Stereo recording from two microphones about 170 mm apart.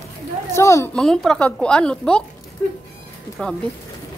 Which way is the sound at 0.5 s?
15° left (ahead or behind).